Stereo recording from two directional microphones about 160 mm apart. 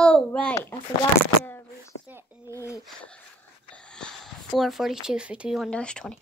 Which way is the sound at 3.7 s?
5° left (ahead or behind).